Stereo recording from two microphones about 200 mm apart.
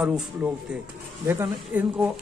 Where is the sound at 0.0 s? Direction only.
5° right (ahead or behind).